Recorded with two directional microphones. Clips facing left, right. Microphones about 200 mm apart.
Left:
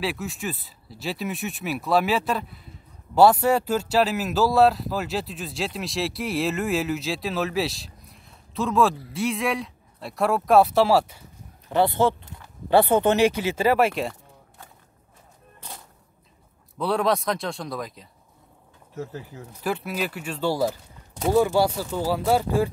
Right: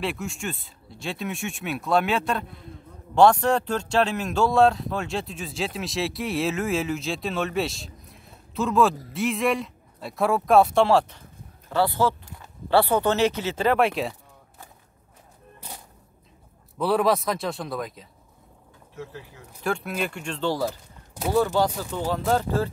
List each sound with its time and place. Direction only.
0.0 s speech: centre (ahead or behind)
11.7 s speech: 20° left (ahead or behind); by 14.1 s centre (ahead or behind)
16.7 s speech: 5° right (ahead or behind)
19.6 s speech: 5° left (ahead or behind)